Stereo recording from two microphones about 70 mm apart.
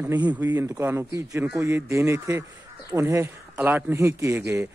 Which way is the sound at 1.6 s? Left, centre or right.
Right.